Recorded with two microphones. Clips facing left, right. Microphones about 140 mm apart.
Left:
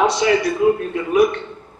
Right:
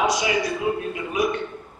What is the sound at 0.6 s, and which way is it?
Speech, 55° left (ahead or behind).